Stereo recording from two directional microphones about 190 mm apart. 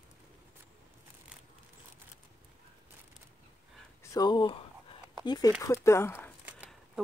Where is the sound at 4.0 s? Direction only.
20° left (ahead or behind).